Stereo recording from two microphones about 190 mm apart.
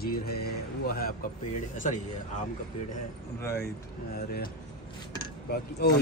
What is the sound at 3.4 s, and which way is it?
Speech, 15° left (ahead or behind).